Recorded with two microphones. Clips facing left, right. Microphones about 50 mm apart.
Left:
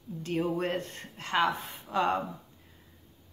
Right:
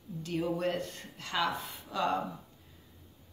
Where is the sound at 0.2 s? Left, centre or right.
Left.